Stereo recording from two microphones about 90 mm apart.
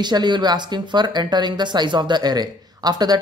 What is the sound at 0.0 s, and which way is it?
A man's voice, 55° right (ahead or behind).